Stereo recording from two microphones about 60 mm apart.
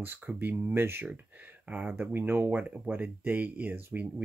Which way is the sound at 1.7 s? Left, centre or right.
Right.